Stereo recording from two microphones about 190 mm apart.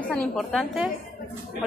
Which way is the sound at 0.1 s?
5° left (ahead or behind).